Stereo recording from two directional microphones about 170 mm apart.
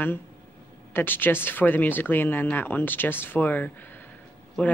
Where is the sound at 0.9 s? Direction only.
10° left (ahead or behind).